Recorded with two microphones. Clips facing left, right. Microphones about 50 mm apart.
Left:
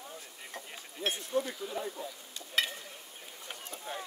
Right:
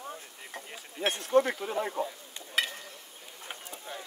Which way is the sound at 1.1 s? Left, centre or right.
Right.